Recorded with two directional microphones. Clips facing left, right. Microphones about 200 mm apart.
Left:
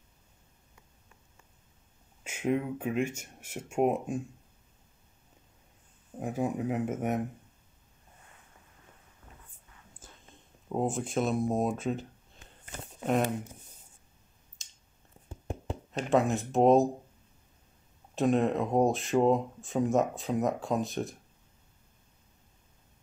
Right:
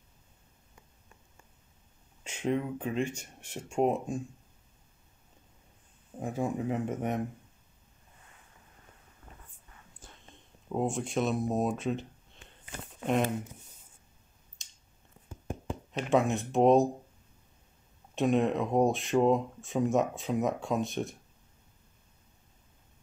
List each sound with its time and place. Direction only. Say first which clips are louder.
2.2 s speech: left 1 dB; 10° left (ahead or behind)
6.1 s speech: left 1 dB; 5° left (ahead or behind)
10.7 s speech: even; centre (ahead or behind)
14.6 s a sound: left 1 dB; centre (ahead or behind)
15.2 s a sound: left 1 dB; 30° left (ahead or behind)
15.9 s speech: even; centre (ahead or behind)
18.1 s speech: even; centre (ahead or behind)